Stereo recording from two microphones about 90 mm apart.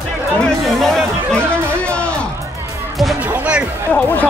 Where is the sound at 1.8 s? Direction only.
10° left (ahead or behind).